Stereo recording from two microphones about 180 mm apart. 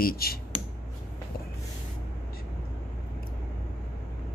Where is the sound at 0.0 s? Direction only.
55° left (ahead or behind).